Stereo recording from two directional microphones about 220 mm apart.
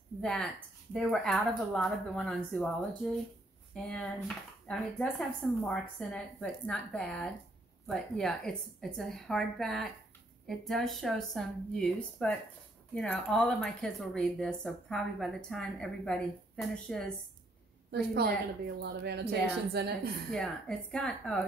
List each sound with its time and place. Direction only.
0.2 s speech: 5° left (ahead or behind)
17.9 s speech: 45° right (ahead or behind)
20.2 s speech: 5° left (ahead or behind)